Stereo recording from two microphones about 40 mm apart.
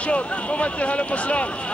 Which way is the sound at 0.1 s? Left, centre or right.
Left.